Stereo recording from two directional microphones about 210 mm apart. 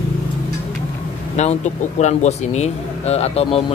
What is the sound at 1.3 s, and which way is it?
Speech, 30° left (ahead or behind).